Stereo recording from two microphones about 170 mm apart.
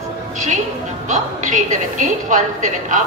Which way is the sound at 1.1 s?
45° right (ahead or behind).